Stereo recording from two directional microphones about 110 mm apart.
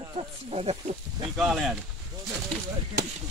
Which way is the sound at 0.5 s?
75° right (ahead or behind).